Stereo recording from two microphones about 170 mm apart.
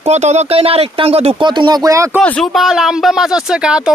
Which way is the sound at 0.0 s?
40° right (ahead or behind).